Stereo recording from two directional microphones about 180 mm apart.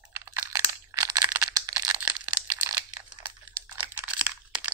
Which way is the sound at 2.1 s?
10° right (ahead or behind).